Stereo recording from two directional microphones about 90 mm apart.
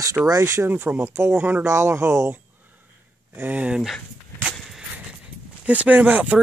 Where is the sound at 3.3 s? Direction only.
20° right (ahead or behind).